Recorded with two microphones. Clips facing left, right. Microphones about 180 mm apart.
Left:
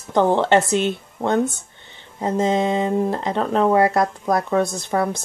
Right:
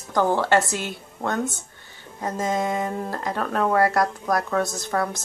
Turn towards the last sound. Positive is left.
turn(degrees=20)  # may be behind; listen again after turning